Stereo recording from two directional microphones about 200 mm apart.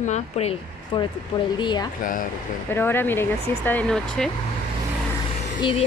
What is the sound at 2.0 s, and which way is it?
Speech, 45° left (ahead or behind).